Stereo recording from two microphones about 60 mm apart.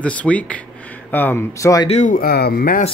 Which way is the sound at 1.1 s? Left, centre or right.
Left.